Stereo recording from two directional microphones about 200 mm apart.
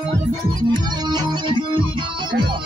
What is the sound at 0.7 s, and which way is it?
Music, 20° right (ahead or behind).